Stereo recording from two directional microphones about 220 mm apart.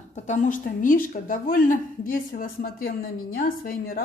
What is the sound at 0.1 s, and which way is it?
Speech, 35° left (ahead or behind).